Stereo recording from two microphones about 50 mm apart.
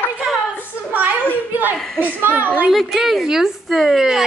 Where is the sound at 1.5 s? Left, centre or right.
Right.